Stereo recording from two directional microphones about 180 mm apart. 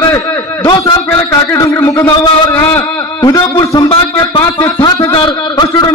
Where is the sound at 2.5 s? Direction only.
15° left (ahead or behind).